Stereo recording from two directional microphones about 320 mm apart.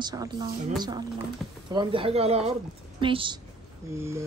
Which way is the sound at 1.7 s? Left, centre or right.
Centre.